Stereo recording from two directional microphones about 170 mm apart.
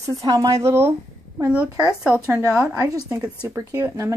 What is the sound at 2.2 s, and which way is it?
Speech, 15° right (ahead or behind).